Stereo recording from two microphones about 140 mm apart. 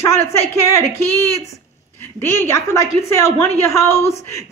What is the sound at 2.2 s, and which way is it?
A woman's voice, 20° left (ahead or behind).